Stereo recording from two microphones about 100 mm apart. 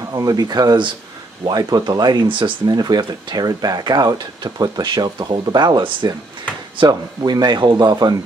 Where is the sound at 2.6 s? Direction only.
40° right (ahead or behind).